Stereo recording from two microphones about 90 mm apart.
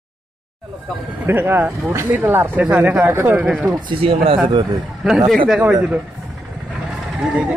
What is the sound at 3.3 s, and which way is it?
Speech, 10° right (ahead or behind).